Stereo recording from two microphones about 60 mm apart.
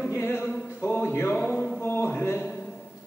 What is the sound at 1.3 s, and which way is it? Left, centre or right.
Speech, centre.